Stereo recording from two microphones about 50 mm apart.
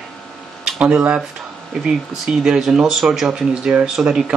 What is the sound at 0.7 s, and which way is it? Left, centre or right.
Speech, right.